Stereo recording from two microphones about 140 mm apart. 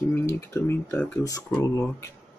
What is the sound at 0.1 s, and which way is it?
Speech, 15° left (ahead or behind).